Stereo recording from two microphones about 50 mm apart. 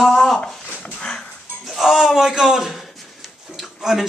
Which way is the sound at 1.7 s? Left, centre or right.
Centre.